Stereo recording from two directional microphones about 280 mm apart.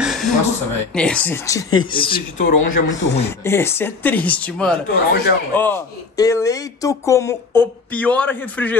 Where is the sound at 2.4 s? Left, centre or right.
Left.